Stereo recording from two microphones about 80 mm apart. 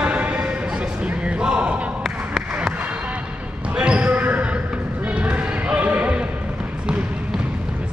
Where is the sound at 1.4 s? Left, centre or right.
Centre.